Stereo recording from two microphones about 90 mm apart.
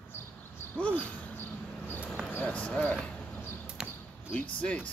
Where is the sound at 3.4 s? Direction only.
25° left (ahead or behind).